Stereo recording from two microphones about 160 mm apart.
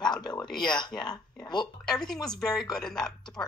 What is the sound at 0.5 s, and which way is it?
Speech, 5° left (ahead or behind).